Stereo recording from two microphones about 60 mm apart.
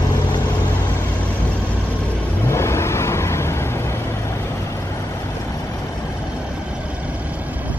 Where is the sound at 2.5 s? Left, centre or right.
Left.